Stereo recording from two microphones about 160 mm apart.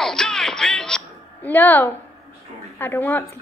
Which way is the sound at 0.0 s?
5° left (ahead or behind).